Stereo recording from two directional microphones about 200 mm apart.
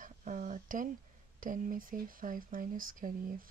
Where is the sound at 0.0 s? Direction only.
40° right (ahead or behind).